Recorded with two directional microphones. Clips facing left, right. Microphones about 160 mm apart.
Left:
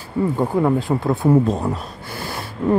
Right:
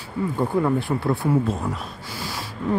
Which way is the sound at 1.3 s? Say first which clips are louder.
Left 9 dB; 35° left (ahead or behind).